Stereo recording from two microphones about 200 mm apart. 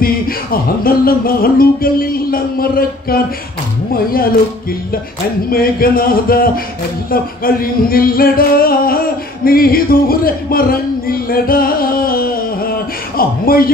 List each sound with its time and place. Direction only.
0.0 s music: 45° left (ahead or behind)
5.5 s music: 45° left (ahead or behind)